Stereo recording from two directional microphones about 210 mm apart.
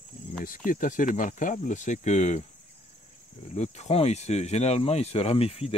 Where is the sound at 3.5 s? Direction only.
30° left (ahead or behind).